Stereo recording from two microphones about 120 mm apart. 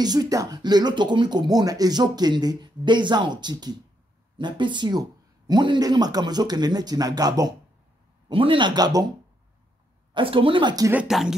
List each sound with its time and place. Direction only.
0.0 s speech: 35° right (ahead or behind)
8.3 s speech: 45° right (ahead or behind)
10.1 s speech: 45° right (ahead or behind)
11.1 s speech: centre (ahead or behind)